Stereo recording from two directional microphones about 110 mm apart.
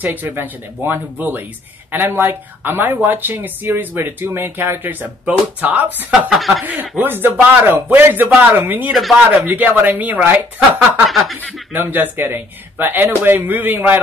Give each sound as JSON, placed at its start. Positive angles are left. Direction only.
{"t": 0.0, "sound": "speech", "side_deg": -15}
{"t": 6.3, "sound": "speech", "side_deg": 0}
{"t": 6.6, "sound": "speech", "side_deg": -15}
{"t": 10.8, "sound": "speech", "side_deg": 0}
{"t": 11.7, "sound": "speech", "side_deg": -15}